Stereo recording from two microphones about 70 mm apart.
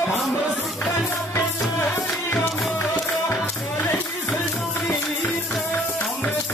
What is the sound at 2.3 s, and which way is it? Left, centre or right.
Music, left.